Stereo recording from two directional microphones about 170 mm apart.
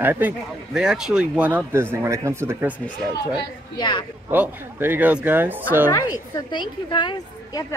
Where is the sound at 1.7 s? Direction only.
15° right (ahead or behind).